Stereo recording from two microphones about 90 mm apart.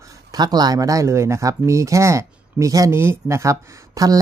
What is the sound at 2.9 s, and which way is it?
Speech, 25° right (ahead or behind).